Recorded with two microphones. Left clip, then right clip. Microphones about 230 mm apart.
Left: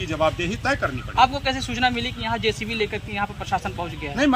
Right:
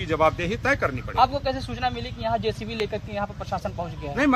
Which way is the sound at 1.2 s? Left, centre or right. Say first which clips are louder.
Left 3 dB; right.